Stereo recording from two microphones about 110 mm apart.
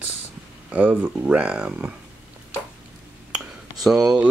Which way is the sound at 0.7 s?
15° right (ahead or behind).